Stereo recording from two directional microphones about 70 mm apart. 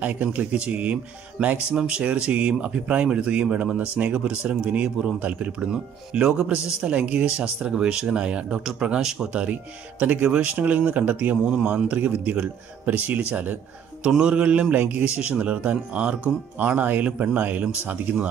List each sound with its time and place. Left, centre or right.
0.0 s a man's voice: right